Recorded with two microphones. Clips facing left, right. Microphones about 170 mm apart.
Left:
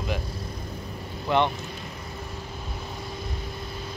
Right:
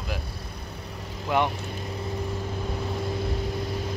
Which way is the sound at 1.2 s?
10° right (ahead or behind).